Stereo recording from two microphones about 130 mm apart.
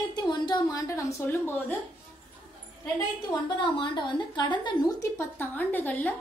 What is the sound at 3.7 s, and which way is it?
A woman's voice, 40° left (ahead or behind).